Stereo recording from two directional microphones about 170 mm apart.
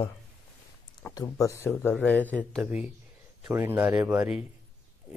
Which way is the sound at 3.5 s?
15° right (ahead or behind).